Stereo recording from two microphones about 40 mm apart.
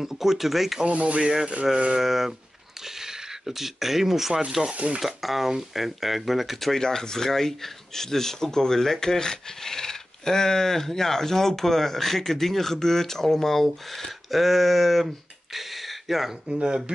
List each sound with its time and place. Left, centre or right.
0.0 s speech: centre
0.8 s speech: right
1.9 s speech: centre
4.7 s speech: right
5.0 s speech: centre
6.8 s speech: centre
14.3 s speech: centre
15.5 s a sound: centre
16.4 s speech: right